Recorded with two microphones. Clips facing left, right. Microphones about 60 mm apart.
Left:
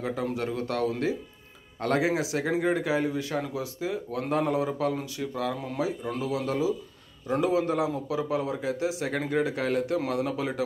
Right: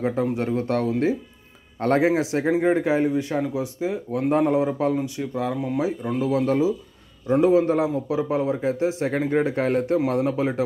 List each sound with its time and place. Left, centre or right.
0.0 s a man's voice: right
5.8 s a man's voice: right